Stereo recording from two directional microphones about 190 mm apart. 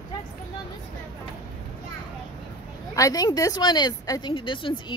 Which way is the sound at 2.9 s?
20° left (ahead or behind).